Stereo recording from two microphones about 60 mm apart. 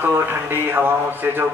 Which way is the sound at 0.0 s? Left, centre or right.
Right.